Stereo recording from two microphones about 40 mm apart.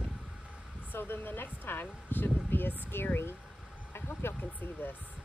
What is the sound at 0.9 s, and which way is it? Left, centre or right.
Speech, left.